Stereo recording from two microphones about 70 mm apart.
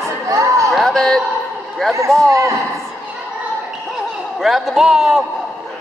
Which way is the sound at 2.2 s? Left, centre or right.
Right.